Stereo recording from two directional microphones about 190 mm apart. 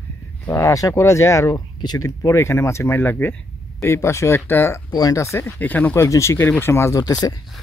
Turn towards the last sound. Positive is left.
turn(degrees=20)  # may be behind; listen again after turning